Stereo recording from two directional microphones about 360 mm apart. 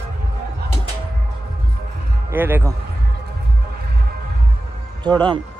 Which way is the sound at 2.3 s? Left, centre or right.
Centre.